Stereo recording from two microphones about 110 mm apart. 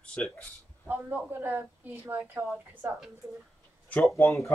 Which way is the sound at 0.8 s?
20° right (ahead or behind).